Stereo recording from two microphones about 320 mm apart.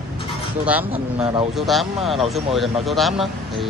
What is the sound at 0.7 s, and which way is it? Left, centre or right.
Speech, centre.